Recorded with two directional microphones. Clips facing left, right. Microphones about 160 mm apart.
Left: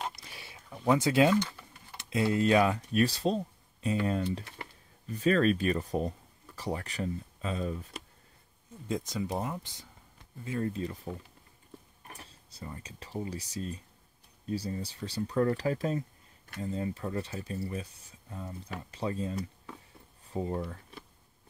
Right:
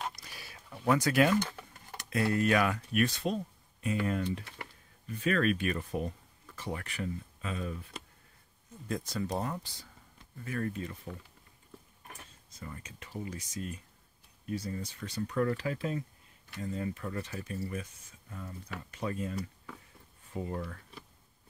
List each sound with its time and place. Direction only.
0.2 s a sound: 25° left (ahead or behind)
0.8 s speech: 25° left (ahead or behind)
8.8 s speech: 20° left (ahead or behind)